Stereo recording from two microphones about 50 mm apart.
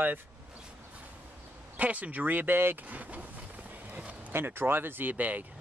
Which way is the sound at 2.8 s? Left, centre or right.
Right.